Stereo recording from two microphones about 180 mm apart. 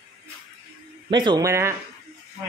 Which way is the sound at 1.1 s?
25° right (ahead or behind).